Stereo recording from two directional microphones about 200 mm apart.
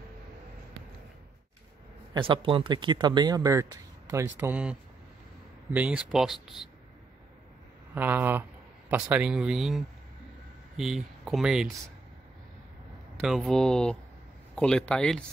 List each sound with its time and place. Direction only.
2.1 s speech: 25° right (ahead or behind); by 6.7 s centre (ahead or behind)
7.9 s speech: 10° right (ahead or behind)
13.2 s speech: centre (ahead or behind)